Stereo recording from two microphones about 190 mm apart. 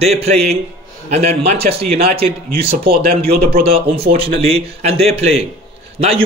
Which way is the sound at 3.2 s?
55° right (ahead or behind).